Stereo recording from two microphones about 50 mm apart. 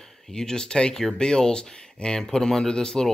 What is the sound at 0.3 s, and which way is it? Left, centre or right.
Speech, centre.